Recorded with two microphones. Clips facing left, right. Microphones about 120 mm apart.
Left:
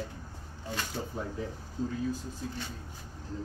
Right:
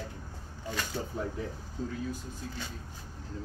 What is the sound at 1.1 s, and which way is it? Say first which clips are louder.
Speech: right 3 dB; 30° left (ahead or behind).